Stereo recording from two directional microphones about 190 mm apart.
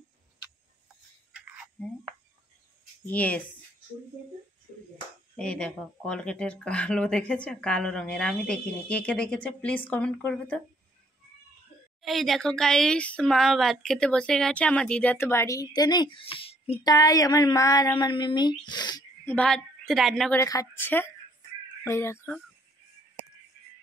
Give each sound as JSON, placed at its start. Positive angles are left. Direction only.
{"t": 1.3, "sound": "whispering", "side_deg": -5}
{"t": 3.1, "sound": "speech", "side_deg": 5}
{"t": 5.3, "sound": "speech", "side_deg": 5}
{"t": 12.0, "sound": "speech", "side_deg": 0}
{"t": 16.9, "sound": "speech", "side_deg": 20}
{"t": 19.2, "sound": "a woman's voice", "side_deg": 5}
{"t": 20.3, "sound": "speech", "side_deg": 15}